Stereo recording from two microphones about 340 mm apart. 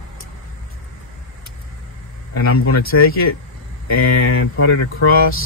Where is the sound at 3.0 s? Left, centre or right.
Left.